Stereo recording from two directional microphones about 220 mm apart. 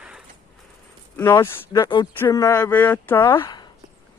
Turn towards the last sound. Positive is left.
turn(degrees=20)  # may be behind; listen again after turning